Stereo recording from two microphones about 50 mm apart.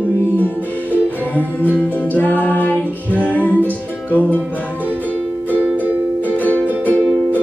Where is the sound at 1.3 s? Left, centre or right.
Left.